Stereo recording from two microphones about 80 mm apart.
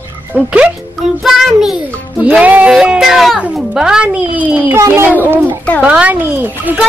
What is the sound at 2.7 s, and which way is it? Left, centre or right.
A child's voice, centre.